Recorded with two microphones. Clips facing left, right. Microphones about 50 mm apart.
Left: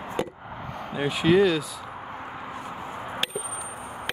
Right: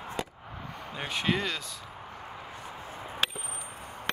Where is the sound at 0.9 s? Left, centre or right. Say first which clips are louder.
Left 9 dB; centre.